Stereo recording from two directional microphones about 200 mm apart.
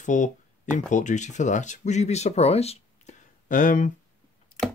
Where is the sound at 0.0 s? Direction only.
40° left (ahead or behind).